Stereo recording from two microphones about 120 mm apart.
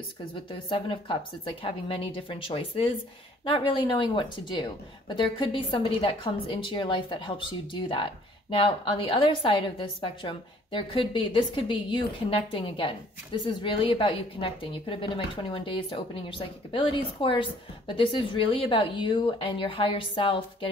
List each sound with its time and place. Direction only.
0.5 s speech: 45° left (ahead or behind)